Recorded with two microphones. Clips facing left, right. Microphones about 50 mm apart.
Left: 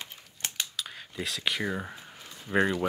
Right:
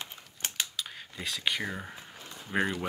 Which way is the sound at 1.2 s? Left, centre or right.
Centre.